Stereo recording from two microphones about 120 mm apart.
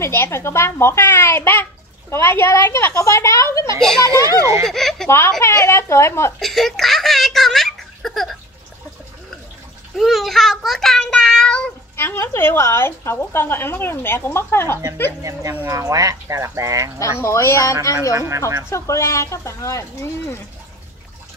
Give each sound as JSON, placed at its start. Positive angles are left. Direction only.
{"t": 0.0, "sound": "a child's voice", "side_deg": 20}
{"t": 4.1, "sound": "speech", "side_deg": -30}
{"t": 4.6, "sound": "speech", "side_deg": 5}
{"t": 5.4, "sound": "a child's voice", "side_deg": 25}
{"t": 6.4, "sound": "giggle", "side_deg": 0}
{"t": 9.9, "sound": "child singing", "side_deg": 0}
{"t": 12.0, "sound": "a child's voice", "side_deg": 20}
{"t": 15.5, "sound": "speech", "side_deg": -25}
{"t": 17.0, "sound": "a child's voice", "side_deg": 25}
{"t": 18.1, "sound": "speech", "side_deg": -25}
{"t": 18.7, "sound": "a child's voice", "side_deg": 25}